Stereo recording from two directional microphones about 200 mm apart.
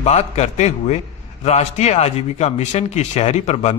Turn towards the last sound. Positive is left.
turn(degrees=35)  # may be behind; listen again after turning